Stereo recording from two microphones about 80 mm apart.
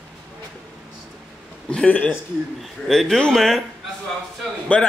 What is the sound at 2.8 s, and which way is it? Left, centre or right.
Speech, centre.